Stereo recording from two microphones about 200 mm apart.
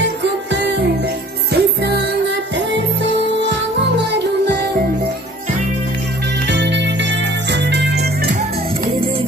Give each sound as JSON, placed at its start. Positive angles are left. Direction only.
{"t": 0.0, "sound": "music", "side_deg": -60}
{"t": 6.4, "sound": "music", "side_deg": -60}